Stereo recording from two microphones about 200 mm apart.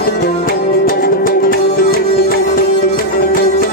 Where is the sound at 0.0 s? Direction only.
50° left (ahead or behind).